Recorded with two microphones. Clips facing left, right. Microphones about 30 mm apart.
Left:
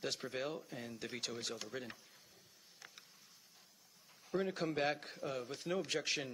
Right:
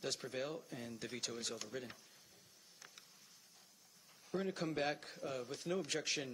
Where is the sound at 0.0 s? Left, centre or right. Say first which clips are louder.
Left 1 dB; centre.